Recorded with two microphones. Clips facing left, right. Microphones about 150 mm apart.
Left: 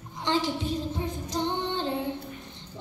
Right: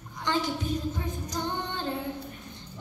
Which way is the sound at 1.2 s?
25° left (ahead or behind).